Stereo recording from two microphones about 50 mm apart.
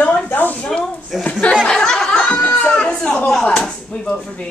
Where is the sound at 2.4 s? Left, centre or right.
Left.